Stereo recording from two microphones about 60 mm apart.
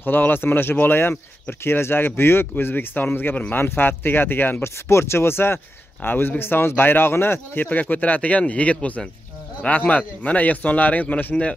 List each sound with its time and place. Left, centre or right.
0.0 s speech: left
4.8 s speech: left
7.6 s speech: left